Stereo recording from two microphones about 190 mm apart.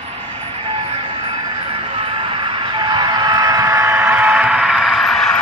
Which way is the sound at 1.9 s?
30° right (ahead or behind).